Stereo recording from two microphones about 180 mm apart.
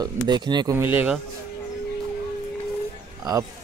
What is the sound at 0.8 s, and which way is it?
Speech, 10° right (ahead or behind).